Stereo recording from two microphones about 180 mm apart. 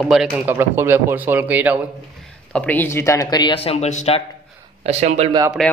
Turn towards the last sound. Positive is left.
turn(degrees=5)  # may be behind; listen again after turning